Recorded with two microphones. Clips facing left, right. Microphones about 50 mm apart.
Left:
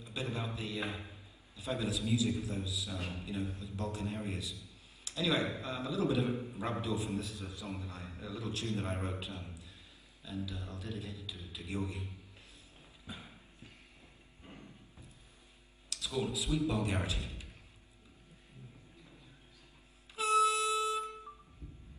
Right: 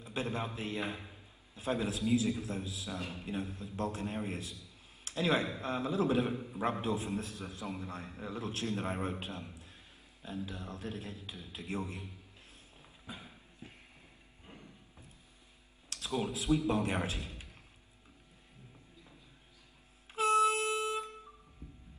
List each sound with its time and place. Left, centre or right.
0.0 s a man's voice: right
4.6 s a sound: right
5.6 s a man's voice: right
15.9 s a man's voice: right
20.2 s music: right